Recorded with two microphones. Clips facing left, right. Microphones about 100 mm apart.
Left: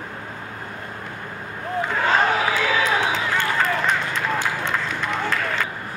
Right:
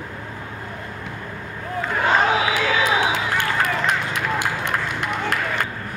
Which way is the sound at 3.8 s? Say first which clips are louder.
Even; 15° right (ahead or behind).